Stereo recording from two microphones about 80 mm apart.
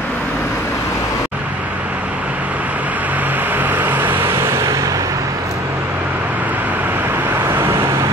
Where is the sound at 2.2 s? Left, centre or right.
Centre; by 5.1 s right.